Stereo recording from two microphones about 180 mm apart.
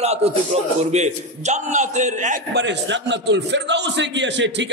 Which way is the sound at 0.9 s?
40° right (ahead or behind).